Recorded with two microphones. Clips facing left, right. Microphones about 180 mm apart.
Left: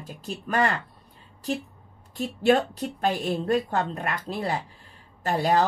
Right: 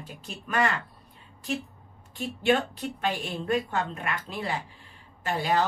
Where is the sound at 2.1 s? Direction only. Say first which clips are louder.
Left 4 dB; 40° left (ahead or behind).